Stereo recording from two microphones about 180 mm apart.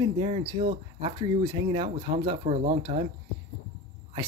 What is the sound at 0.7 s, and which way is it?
Speech, 30° right (ahead or behind).